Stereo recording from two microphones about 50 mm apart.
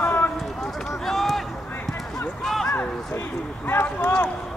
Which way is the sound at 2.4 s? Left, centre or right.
Centre.